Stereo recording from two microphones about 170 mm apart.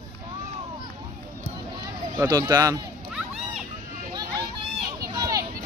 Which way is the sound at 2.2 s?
20° right (ahead or behind).